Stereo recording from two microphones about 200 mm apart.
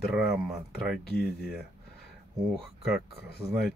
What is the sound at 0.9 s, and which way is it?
Speech, 5° right (ahead or behind).